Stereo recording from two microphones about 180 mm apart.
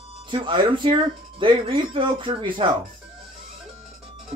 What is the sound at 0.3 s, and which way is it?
Speech, 25° right (ahead or behind).